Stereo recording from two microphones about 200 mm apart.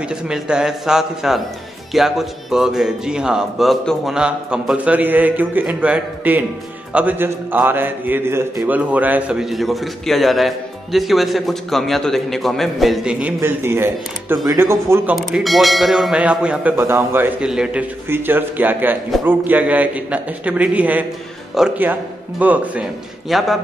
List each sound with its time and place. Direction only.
0.1 s a man's voice: 5° right (ahead or behind)
15.1 s a man's voice: centre (ahead or behind)